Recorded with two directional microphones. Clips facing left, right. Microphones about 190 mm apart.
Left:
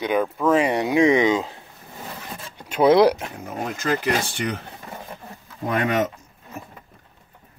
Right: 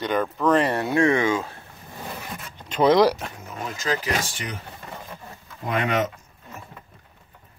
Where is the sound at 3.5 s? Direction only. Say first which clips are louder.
Left 3 dB; 55° left (ahead or behind).